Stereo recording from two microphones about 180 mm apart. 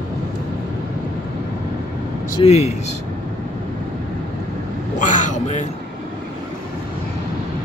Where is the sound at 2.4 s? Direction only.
35° left (ahead or behind).